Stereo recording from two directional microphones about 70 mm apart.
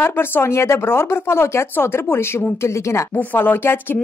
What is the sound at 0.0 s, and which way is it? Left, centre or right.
Speech, left.